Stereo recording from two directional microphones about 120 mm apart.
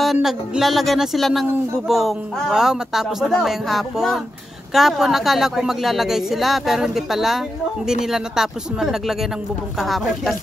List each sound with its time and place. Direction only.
0.0 s speech: 5° right (ahead or behind)